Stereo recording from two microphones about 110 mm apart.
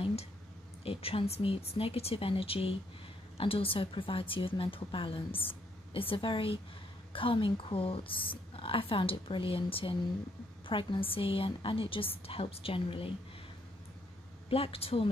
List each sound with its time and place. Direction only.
0.0 s a sound: 70° left (ahead or behind)
0.8 s a woman's voice: 60° left (ahead or behind)
14.5 s a woman's voice: 60° left (ahead or behind)